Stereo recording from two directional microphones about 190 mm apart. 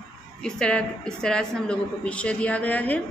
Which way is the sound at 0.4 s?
5° left (ahead or behind).